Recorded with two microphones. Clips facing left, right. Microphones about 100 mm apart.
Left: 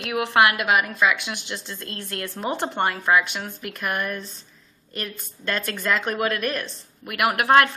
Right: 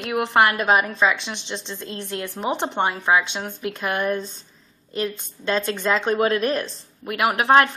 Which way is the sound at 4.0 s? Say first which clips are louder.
Right 5 dB; 25° right (ahead or behind).